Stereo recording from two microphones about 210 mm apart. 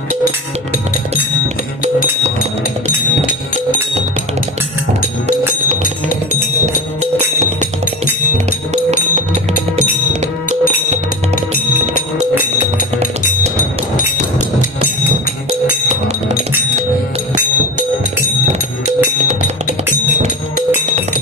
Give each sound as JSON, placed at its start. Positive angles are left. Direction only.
{"t": 6.6, "sound": "music", "side_deg": -30}
{"t": 8.7, "sound": "music", "side_deg": -30}
{"t": 18.5, "sound": "music", "side_deg": -30}